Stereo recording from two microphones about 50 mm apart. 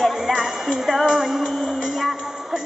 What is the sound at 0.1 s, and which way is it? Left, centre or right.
Music, centre.